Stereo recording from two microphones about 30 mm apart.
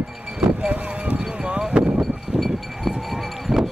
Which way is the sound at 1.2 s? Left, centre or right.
Right.